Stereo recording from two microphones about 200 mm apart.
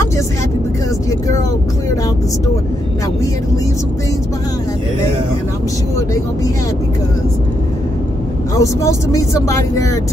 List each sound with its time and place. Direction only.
8.5 s speech: 15° left (ahead or behind)